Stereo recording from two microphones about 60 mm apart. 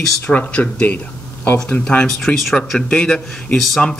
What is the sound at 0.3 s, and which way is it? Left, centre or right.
Speech, left.